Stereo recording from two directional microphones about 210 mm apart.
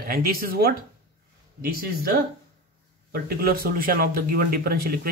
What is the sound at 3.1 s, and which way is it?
Speech, 45° right (ahead or behind).